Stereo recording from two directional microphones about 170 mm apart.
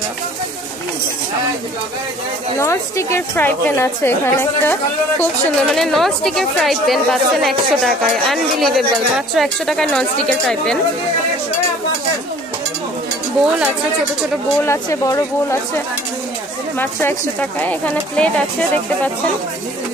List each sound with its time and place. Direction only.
2.6 s a woman's voice: 15° left (ahead or behind)
5.2 s speech: centre (ahead or behind)
13.4 s speech: 5° right (ahead or behind)
14.6 s a woman's voice: 15° left (ahead or behind)
16.7 s a woman's voice: 10° left (ahead or behind)